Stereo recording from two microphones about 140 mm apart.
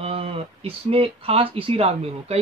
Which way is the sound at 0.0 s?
45° right (ahead or behind).